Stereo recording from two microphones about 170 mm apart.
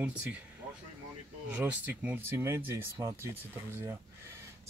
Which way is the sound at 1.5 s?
10° right (ahead or behind).